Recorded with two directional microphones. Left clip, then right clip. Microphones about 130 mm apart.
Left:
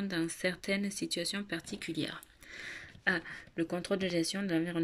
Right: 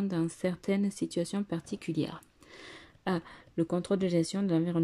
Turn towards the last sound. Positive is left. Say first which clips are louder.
# right 3 dB
turn(degrees=-30)  # may be behind; listen again after turning